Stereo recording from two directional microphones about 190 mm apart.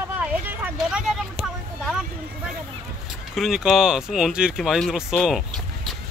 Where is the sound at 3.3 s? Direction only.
Centre (ahead or behind).